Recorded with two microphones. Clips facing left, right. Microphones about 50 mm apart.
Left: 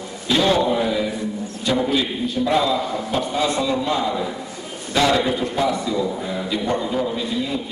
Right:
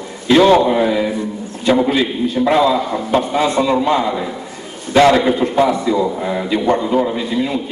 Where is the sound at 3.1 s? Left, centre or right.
Right.